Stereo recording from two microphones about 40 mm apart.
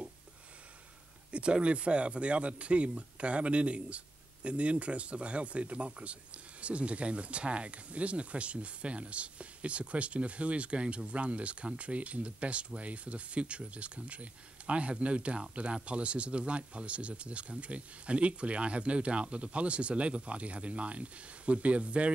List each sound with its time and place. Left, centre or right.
1.3 s speech: right